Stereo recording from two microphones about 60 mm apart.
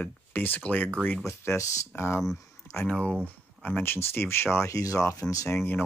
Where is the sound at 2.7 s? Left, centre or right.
Left.